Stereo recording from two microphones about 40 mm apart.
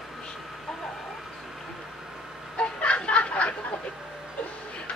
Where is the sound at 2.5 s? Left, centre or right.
Left.